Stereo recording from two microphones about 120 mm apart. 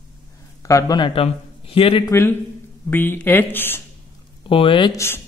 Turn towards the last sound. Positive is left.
turn(degrees=20)  # may be behind; listen again after turning